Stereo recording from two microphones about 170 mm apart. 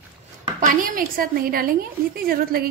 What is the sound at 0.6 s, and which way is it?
A woman's voice, 50° right (ahead or behind).